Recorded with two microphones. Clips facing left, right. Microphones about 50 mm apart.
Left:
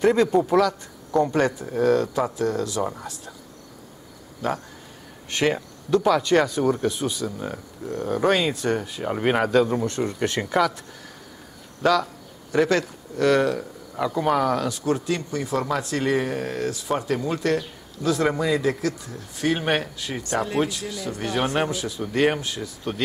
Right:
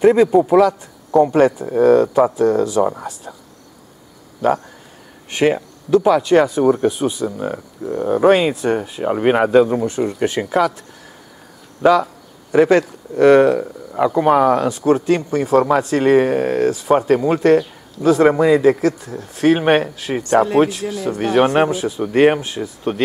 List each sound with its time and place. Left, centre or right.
0.0 s speech: centre
5.3 s speech: centre
11.8 s a sound: centre
13.1 s speech: right
19.4 s speech: right